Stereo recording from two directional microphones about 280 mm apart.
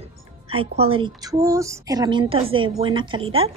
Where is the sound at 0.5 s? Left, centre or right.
Centre.